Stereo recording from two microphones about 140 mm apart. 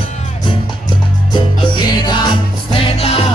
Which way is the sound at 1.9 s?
30° left (ahead or behind).